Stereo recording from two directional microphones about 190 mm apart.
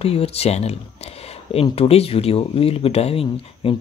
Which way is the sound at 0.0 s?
30° left (ahead or behind).